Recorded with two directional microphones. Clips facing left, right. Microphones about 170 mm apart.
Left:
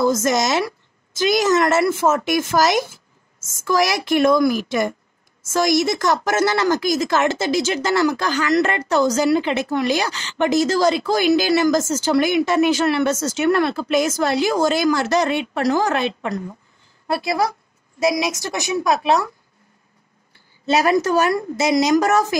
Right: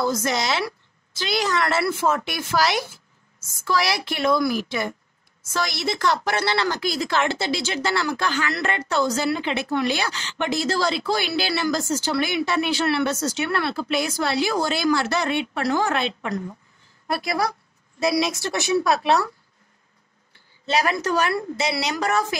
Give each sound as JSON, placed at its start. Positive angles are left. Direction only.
{"t": 0.0, "sound": "a woman's voice", "side_deg": 45}
{"t": 17.1, "sound": "a woman's voice", "side_deg": 25}
{"t": 20.8, "sound": "a woman's voice", "side_deg": 40}